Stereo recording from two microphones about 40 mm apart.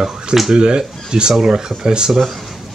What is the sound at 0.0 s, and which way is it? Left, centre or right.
Speech, centre.